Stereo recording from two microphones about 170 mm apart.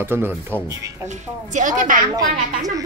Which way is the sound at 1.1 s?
45° right (ahead or behind).